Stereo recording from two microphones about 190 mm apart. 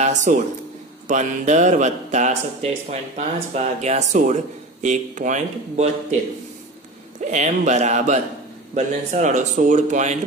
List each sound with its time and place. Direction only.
0.0 s a man's voice: 40° right (ahead or behind)
7.2 s a man's voice: 40° right (ahead or behind)